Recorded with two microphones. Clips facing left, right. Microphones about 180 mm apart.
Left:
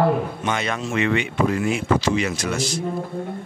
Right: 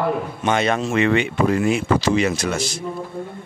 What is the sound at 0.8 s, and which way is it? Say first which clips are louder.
Speech: right 4 dB; 40° right (ahead or behind).